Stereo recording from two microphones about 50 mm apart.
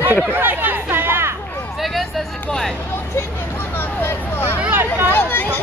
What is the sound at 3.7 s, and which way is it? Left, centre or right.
Vehicle, left.